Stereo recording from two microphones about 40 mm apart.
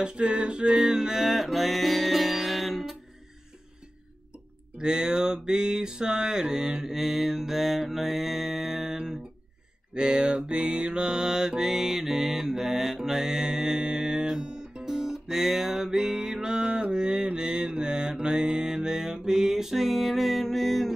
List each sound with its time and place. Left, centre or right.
0.0 s music: right; by 3.0 s centre
4.7 s a sound: centre
9.9 s music: right; by 20.9 s centre